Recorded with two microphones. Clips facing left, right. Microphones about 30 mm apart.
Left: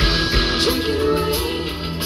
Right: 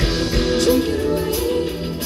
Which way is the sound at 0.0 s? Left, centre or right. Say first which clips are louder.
Left 1 dB; left.